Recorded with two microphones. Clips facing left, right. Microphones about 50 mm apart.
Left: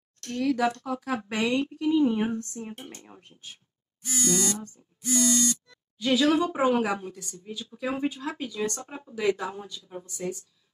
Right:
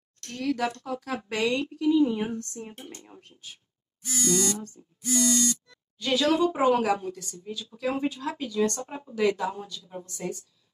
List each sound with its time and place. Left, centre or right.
0.3 s a woman's voice: centre
1.1 s a woman's voice: centre
2.5 s a woman's voice: centre
3.1 s a woman's voice: left
5.9 s a woman's voice: centre